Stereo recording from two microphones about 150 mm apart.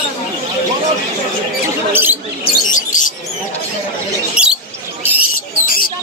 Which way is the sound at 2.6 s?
60° left (ahead or behind).